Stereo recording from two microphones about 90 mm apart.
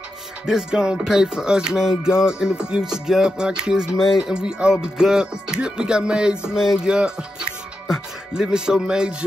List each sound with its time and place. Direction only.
0.5 s music: 10° right (ahead or behind)